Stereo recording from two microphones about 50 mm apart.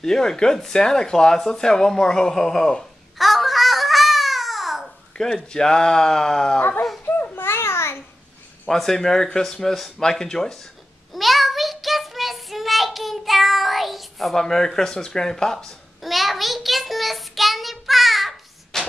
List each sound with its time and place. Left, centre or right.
0.0 s speech: centre
3.2 s babbling: centre
5.1 s speech: centre
7.3 s babbling: left
8.6 s speech: centre
11.1 s child singing: centre
16.0 s child singing: centre
18.7 s a sound: centre